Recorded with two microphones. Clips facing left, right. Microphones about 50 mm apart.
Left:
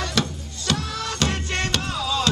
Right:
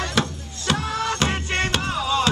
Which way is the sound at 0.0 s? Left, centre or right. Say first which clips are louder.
Right 1 dB; centre.